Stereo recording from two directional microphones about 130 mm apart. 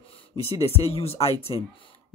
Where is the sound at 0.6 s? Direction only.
50° left (ahead or behind).